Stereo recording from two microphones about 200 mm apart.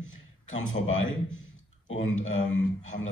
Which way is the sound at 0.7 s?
80° left.